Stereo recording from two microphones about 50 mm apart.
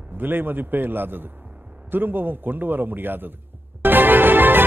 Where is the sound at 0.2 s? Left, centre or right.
Right.